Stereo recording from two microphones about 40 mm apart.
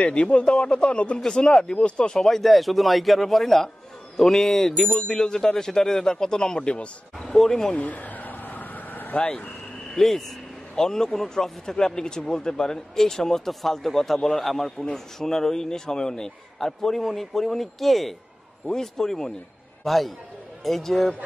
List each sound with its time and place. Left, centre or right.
0.0 s speech: left
2.1 s a man's voice: centre
7.2 s speech: centre
7.7 s vehicle: left
9.2 s speech: left
9.9 s a man's voice: centre